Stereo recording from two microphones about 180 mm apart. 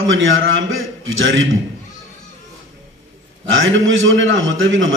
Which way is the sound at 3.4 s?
90° right.